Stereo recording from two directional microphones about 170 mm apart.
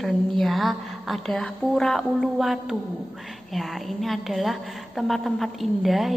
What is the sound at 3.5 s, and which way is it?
A woman's voice, centre (ahead or behind).